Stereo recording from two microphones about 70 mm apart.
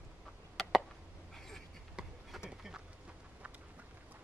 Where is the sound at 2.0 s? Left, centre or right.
Centre.